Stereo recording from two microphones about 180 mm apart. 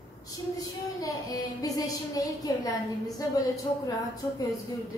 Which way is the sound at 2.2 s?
20° left (ahead or behind).